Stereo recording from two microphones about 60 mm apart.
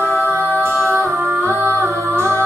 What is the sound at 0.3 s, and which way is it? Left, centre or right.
Music, right.